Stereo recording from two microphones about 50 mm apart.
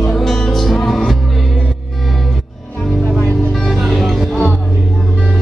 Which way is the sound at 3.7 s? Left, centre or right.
Centre.